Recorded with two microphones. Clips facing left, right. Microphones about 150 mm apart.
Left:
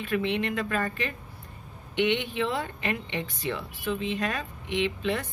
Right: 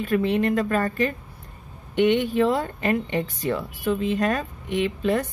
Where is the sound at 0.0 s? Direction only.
40° right (ahead or behind).